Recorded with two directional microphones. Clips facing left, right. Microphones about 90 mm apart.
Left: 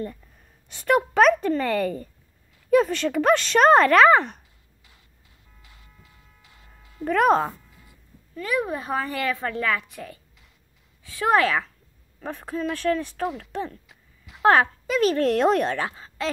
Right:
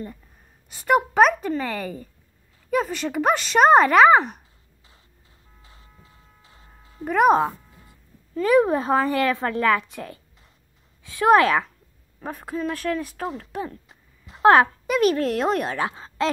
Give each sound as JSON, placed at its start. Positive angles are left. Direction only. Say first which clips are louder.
{"t": 0.7, "sound": "speech", "louder": "right 1 dB", "side_deg": -10}
{"t": 5.6, "sound": "a sound", "louder": "right 2 dB", "side_deg": -30}
{"t": 7.1, "sound": "speech", "louder": "right 2 dB", "side_deg": -10}
{"t": 8.4, "sound": "a woman's voice", "louder": "right 8 dB", "side_deg": -30}
{"t": 12.2, "sound": "speech", "louder": "even", "side_deg": -5}
{"t": 13.7, "sound": "a sound", "louder": "right 2 dB", "side_deg": -35}
{"t": 14.4, "sound": "a child's voice", "louder": "right 3 dB", "side_deg": -20}
{"t": 15.2, "sound": "speech", "louder": "left 3 dB", "side_deg": 0}
{"t": 15.8, "sound": "speech", "louder": "right 4 dB", "side_deg": -25}